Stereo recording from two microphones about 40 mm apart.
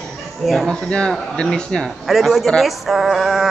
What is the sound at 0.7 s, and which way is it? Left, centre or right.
Speech, left.